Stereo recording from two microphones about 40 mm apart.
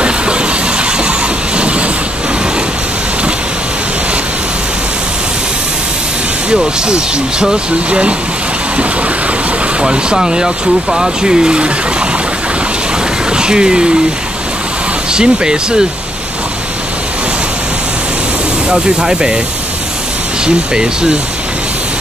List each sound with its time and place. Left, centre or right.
0.0 s a sound: right
6.5 s speech: centre
9.8 s speech: right
13.3 s speech: right
15.1 s speech: centre
18.7 s speech: centre
20.4 s speech: centre